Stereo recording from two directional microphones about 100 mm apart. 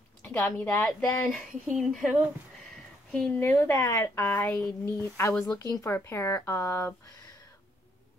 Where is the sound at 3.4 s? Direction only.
20° left (ahead or behind).